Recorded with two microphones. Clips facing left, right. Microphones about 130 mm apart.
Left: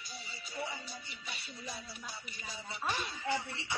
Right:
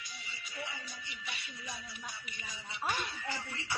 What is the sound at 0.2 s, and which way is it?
Music, 30° left (ahead or behind).